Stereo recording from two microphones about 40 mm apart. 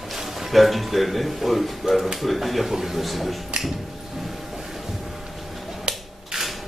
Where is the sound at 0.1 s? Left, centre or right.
Centre.